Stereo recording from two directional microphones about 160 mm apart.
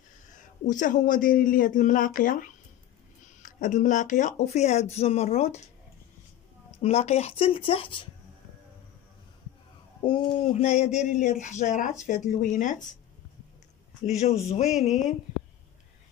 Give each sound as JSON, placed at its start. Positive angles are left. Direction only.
{"t": 0.3, "sound": "speech", "side_deg": 50}
{"t": 6.8, "sound": "speech", "side_deg": 40}
{"t": 10.0, "sound": "speech", "side_deg": 35}
{"t": 14.0, "sound": "speech", "side_deg": 45}